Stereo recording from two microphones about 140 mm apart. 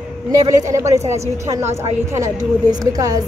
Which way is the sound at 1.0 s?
50° right (ahead or behind).